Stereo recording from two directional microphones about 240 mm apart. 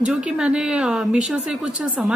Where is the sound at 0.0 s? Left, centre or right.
Centre.